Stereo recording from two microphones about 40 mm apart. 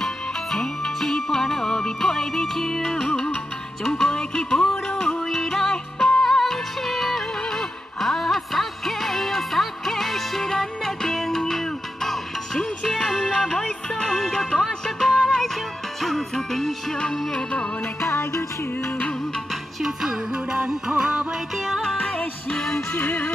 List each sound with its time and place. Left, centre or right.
0.0 s music: centre
13.9 s music: centre
19.8 s music: centre
21.0 s music: right
22.5 s music: centre
22.9 s music: left